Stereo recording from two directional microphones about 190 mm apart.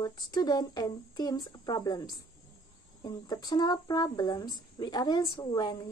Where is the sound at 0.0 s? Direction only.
20° left (ahead or behind).